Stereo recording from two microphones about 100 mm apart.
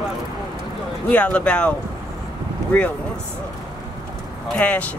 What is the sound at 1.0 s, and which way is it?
Speech, 15° left (ahead or behind).